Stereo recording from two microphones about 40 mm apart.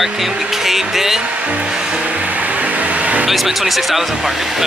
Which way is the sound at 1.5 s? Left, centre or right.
Right.